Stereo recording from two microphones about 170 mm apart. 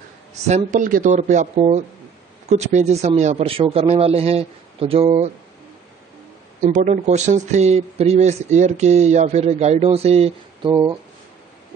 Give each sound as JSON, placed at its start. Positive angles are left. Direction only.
{"t": 0.5, "sound": "speech", "side_deg": -45}
{"t": 6.6, "sound": "speech", "side_deg": -45}
{"t": 10.7, "sound": "speech", "side_deg": -20}